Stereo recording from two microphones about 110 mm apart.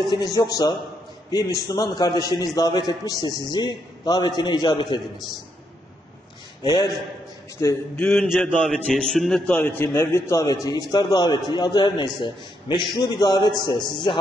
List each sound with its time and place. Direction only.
0.1 s a man's voice: 35° left (ahead or behind)
6.6 s a man's voice: 40° left (ahead or behind)
7.6 s a man's voice: 25° left (ahead or behind)
7.9 s a man's voice: 10° left (ahead or behind)
9.9 s a man's voice: 25° left (ahead or behind)
10.4 s a man's voice: 35° left (ahead or behind)